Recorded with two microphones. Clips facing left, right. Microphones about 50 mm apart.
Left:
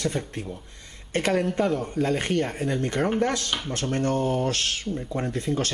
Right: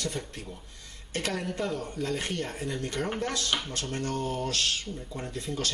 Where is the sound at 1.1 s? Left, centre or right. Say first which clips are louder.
Left 8 dB; left.